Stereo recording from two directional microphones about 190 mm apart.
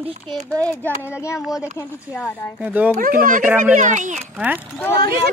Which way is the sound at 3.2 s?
45° right (ahead or behind).